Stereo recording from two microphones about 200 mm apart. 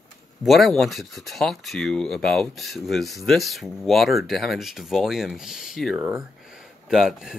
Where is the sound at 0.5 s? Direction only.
Centre (ahead or behind).